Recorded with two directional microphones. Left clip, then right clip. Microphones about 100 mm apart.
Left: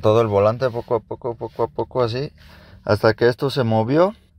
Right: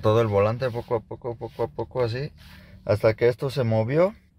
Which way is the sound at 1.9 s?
45° left (ahead or behind).